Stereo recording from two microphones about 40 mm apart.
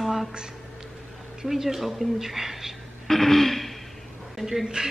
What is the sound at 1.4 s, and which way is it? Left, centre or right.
Speech, centre.